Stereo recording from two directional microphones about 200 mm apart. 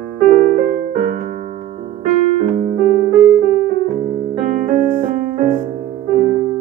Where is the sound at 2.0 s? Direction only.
35° right (ahead or behind).